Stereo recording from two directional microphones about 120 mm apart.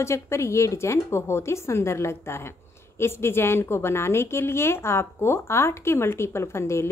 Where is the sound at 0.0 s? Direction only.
25° left (ahead or behind).